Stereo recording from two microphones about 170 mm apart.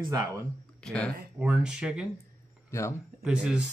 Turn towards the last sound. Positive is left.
turn(degrees=-5)  # may be behind; listen again after turning